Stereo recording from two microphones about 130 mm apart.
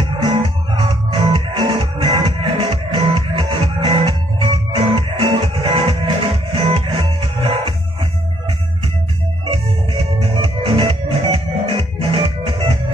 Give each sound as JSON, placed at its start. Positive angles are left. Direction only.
{"t": 0.7, "sound": "music", "side_deg": -45}
{"t": 10.2, "sound": "music", "side_deg": -45}